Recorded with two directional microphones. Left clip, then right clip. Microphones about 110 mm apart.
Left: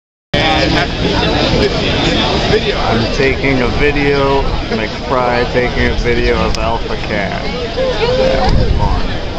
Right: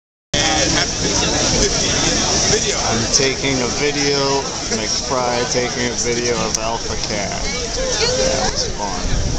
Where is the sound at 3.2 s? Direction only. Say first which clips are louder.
Left 3 dB; 35° right (ahead or behind).